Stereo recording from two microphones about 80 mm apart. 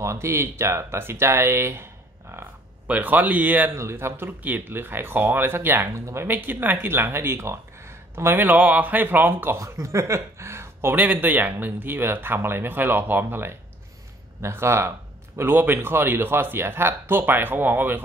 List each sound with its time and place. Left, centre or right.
0.0 s speech: right
3.7 s speech: right
5.9 s speech: right
6.2 s speech: right
9.6 s speech: right
11.0 s speech: right